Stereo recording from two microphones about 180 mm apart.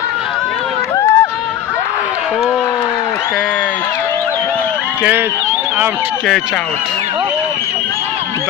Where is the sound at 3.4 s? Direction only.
5° left (ahead or behind).